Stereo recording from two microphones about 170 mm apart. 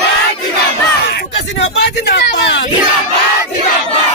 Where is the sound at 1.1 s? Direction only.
90° left.